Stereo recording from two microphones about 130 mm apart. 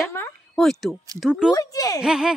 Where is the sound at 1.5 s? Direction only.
25° left (ahead or behind).